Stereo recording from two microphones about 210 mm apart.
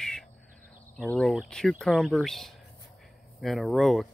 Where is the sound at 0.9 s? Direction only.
Centre (ahead or behind).